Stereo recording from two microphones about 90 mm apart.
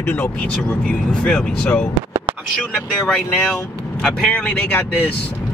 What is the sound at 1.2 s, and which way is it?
Speech, 10° left (ahead or behind).